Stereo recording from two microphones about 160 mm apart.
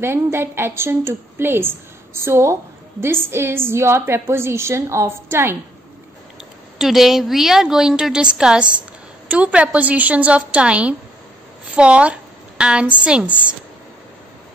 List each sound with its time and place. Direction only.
0.0 s a woman's voice: 15° right (ahead or behind)
6.8 s a woman's voice: centre (ahead or behind)